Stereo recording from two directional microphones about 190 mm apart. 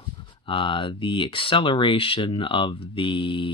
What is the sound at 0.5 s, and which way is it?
Speech, 25° left (ahead or behind).